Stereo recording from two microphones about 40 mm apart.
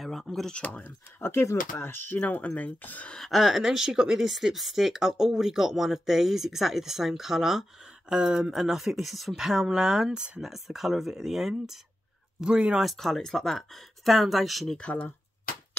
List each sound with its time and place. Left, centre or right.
0.0 s a sound: centre
0.5 s speech: left
0.8 s speech: left
2.2 s speech: left
3.3 s speech: centre; by 10.3 s right
10.4 s speech: centre
12.5 s speech: right
12.8 s speech: centre
14.8 s speech: left